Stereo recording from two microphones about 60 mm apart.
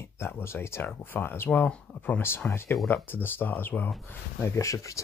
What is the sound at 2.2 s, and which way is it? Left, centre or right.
Speech, left.